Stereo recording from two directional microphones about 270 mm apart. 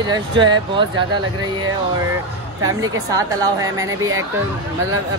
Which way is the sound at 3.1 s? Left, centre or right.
Centre.